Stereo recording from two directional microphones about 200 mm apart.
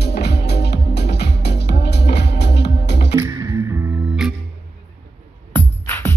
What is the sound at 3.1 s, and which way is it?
Music, 15° right (ahead or behind).